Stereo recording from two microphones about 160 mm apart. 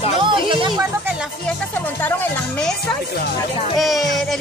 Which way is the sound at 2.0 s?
10° left (ahead or behind).